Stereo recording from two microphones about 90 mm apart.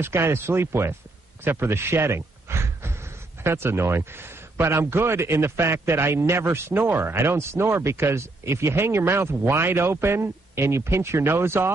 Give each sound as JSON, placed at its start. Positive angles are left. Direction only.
{"t": 0.0, "sound": "speech", "side_deg": -30}